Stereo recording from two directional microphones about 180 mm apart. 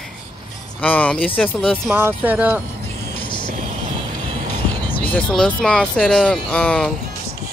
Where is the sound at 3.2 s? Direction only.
25° left (ahead or behind).